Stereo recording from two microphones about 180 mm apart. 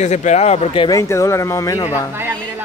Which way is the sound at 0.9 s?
15° left (ahead or behind).